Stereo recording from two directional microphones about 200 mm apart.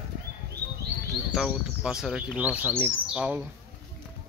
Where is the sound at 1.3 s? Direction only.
5° right (ahead or behind).